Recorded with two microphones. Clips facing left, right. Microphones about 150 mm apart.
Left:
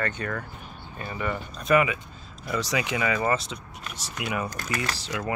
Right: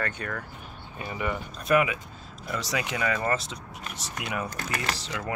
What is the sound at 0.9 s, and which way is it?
Speech, 15° right (ahead or behind).